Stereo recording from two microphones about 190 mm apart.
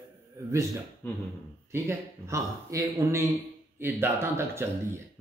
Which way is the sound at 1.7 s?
15° right (ahead or behind).